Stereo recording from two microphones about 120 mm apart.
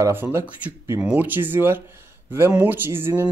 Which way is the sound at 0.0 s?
20° right (ahead or behind).